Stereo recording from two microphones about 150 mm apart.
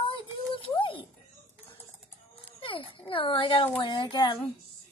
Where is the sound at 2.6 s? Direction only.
35° left (ahead or behind).